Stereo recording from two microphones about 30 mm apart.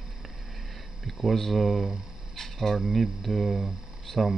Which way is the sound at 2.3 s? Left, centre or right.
Centre.